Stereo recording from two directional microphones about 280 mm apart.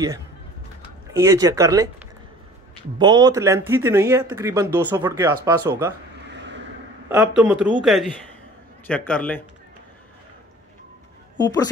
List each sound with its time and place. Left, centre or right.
1.1 s speech: centre
3.0 s speech: centre
6.3 s vehicle: right
7.1 s a man's voice: centre
11.3 s speech: centre